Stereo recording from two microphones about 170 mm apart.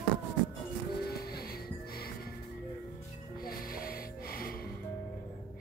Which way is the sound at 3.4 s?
60° left (ahead or behind).